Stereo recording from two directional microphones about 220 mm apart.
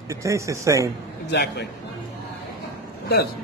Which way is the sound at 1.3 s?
50° left (ahead or behind).